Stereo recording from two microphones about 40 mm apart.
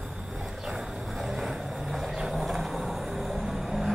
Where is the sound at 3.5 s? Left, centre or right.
Centre.